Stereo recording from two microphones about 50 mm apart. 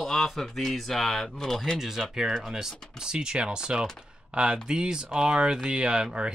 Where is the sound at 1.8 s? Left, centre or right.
Centre.